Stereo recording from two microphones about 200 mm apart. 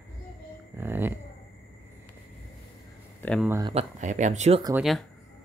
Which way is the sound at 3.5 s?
20° right (ahead or behind).